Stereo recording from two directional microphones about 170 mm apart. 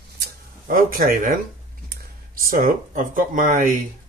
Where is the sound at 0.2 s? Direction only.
55° right (ahead or behind).